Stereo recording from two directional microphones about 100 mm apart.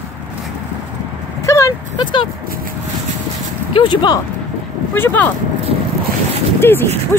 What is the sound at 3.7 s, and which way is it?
Speech, 50° left (ahead or behind).